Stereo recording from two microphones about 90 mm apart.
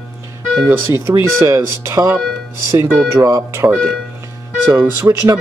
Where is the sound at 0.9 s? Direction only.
30° right (ahead or behind).